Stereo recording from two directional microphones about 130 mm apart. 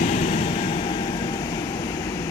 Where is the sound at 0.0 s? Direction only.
55° left (ahead or behind).